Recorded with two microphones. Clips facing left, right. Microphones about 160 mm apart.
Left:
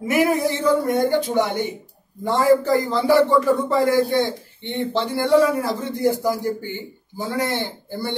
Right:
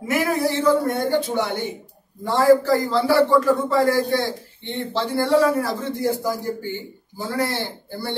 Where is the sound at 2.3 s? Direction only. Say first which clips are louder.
Right 1 dB; 20° left (ahead or behind).